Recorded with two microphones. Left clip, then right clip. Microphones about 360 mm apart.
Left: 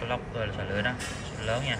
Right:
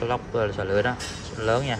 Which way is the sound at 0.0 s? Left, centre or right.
Centre.